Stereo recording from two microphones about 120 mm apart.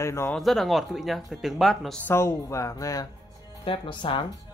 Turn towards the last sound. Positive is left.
turn(degrees=45)  # may be behind; listen again after turning